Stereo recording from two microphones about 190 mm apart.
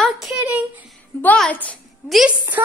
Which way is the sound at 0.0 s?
Centre (ahead or behind).